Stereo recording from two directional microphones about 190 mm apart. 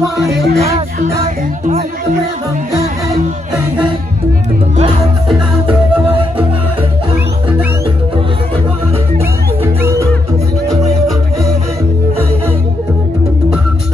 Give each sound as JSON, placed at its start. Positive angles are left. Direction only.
{"t": 0.2, "sound": "music", "side_deg": 0}
{"t": 0.6, "sound": "music", "side_deg": -35}
{"t": 10.7, "sound": "music", "side_deg": -35}